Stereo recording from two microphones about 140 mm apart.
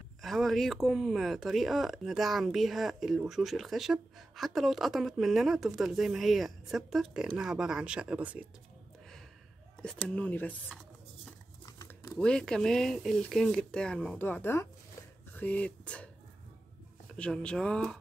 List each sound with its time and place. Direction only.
0.2 s speech: centre (ahead or behind)
9.8 s speech: 5° left (ahead or behind)
12.2 s speech: 5° left (ahead or behind)
17.1 s speech: 5° left (ahead or behind)